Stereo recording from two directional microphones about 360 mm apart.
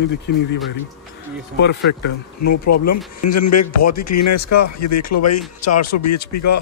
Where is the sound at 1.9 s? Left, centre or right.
Left.